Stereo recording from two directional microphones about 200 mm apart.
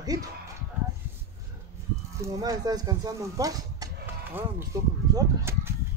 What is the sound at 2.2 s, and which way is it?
Speech, 20° right (ahead or behind).